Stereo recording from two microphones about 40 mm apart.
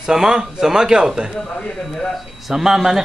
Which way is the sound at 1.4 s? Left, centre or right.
Left.